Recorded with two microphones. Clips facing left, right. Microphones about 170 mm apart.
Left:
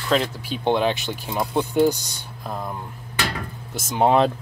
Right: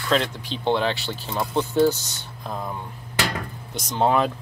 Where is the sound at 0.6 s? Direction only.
15° left (ahead or behind).